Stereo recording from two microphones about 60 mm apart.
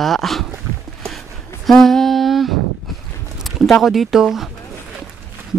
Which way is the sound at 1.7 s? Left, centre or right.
Centre.